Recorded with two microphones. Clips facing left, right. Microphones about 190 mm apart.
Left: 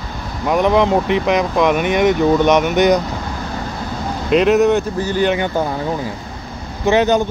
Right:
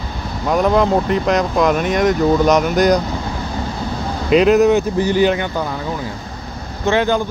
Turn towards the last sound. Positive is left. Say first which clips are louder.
# left 2 dB
turn(degrees=20)  # may be behind; listen again after turning